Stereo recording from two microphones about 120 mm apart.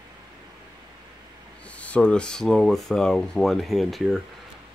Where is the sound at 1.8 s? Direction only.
10° left (ahead or behind).